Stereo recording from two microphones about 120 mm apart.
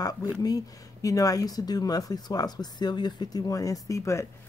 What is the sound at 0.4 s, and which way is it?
Speech, 30° left (ahead or behind).